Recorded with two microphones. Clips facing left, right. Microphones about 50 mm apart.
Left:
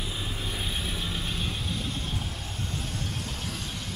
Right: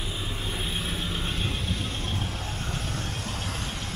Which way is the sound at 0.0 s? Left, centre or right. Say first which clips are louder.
Right 1 dB; centre.